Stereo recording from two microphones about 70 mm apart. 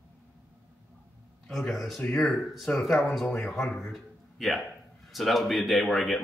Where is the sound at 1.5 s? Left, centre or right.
Centre.